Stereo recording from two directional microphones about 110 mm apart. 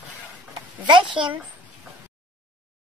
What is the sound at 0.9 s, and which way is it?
Speech, 50° right (ahead or behind).